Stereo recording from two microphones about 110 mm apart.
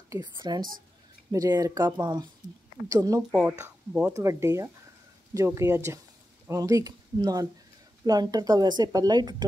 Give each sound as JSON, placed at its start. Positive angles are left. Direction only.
{"t": 0.2, "sound": "speech", "side_deg": -40}
{"t": 2.9, "sound": "speech", "side_deg": -30}
{"t": 3.3, "sound": "speech", "side_deg": -10}
{"t": 4.1, "sound": "speech", "side_deg": -25}